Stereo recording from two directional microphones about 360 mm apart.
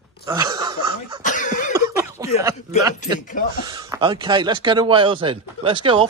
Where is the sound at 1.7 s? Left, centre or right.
Centre.